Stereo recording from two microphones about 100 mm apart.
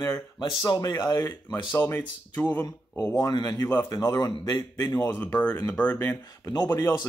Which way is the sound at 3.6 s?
20° left (ahead or behind).